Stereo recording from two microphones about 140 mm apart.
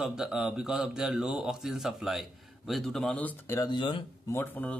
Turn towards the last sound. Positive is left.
turn(degrees=15)  # may be behind; listen again after turning